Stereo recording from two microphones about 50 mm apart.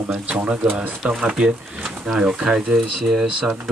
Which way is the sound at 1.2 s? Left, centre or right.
Centre.